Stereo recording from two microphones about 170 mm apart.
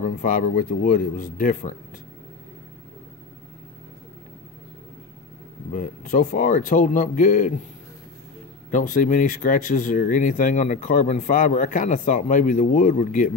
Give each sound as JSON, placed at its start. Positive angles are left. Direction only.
{"t": 0.0, "sound": "speech", "side_deg": 50}
{"t": 5.7, "sound": "speech", "side_deg": 50}
{"t": 8.6, "sound": "speech", "side_deg": 50}